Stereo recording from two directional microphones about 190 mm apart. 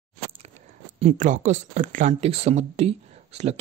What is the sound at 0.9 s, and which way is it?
Speech, 40° right (ahead or behind).